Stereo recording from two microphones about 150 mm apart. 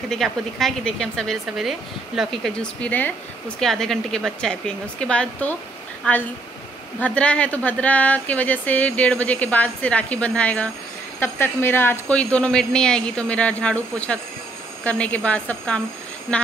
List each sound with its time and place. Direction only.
0.1 s a woman's voice: centre (ahead or behind)